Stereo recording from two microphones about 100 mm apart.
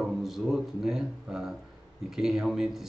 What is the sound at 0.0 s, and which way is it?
Speech, 5° right (ahead or behind).